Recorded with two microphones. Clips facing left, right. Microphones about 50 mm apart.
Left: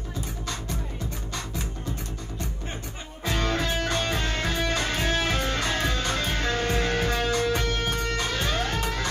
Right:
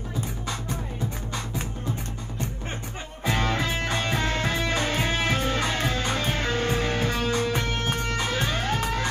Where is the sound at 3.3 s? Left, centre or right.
Centre.